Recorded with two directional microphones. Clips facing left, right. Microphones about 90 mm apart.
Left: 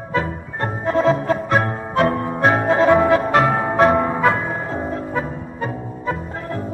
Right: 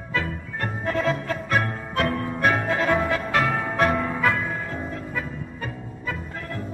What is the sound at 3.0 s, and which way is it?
Brass instrument, 35° left (ahead or behind).